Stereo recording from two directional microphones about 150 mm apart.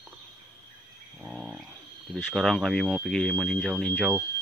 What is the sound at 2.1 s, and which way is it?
Speech, centre (ahead or behind).